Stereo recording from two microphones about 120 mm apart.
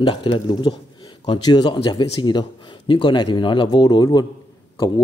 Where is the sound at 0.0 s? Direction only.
45° left (ahead or behind).